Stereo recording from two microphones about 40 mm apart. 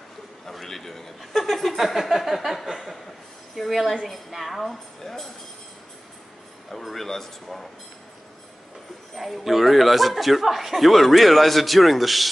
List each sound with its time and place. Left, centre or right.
0.5 s a sound: centre
3.5 s a woman's voice: centre
6.7 s speech: centre
9.1 s speech: centre